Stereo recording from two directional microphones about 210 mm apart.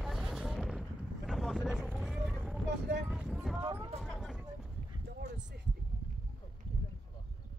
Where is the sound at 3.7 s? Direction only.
Centre (ahead or behind).